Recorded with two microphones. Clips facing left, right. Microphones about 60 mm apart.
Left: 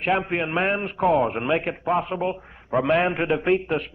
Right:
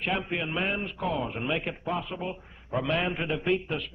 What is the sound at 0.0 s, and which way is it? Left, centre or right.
A man's voice, left.